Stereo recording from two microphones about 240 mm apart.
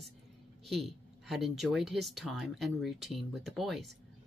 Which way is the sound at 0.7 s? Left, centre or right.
Centre.